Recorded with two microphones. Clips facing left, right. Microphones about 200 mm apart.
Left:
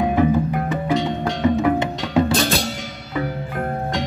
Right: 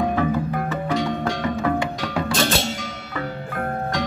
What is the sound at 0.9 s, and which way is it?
Music, 20° left (ahead or behind).